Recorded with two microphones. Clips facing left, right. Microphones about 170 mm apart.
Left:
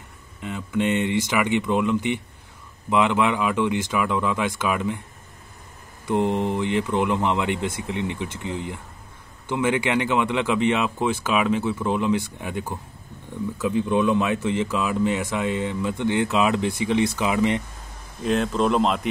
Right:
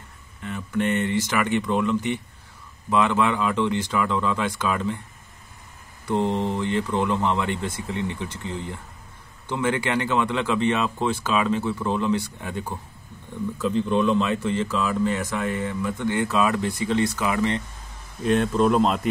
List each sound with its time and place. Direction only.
0.4 s speech: 15° left (ahead or behind)
6.0 s speech: 15° left (ahead or behind)
18.2 s speech: centre (ahead or behind)